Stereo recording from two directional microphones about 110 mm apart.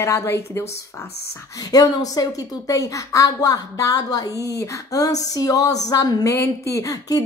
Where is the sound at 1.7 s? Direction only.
35° left (ahead or behind).